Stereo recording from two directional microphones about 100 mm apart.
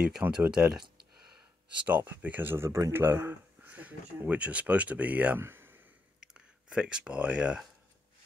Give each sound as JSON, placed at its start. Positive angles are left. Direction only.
{"t": 0.3, "sound": "speech", "side_deg": -10}
{"t": 1.9, "sound": "speech", "side_deg": -15}
{"t": 6.2, "sound": "speech", "side_deg": -10}